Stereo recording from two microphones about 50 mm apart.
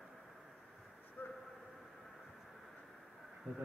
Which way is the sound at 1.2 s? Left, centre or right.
Left.